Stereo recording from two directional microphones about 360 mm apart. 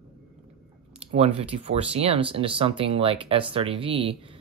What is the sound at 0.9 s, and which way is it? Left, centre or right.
Speech, centre.